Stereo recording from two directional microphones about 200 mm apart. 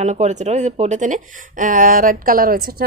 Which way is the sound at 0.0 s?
35° right (ahead or behind).